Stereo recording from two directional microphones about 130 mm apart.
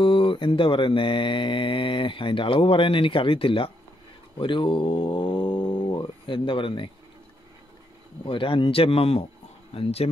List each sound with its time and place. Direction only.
0.0 s mantra: 45° left (ahead or behind)
8.3 s speech: 40° left (ahead or behind)